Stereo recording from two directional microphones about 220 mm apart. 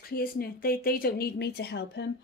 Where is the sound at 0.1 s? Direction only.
40° left (ahead or behind).